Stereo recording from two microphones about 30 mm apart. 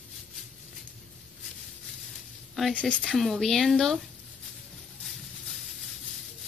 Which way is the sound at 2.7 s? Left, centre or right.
Left.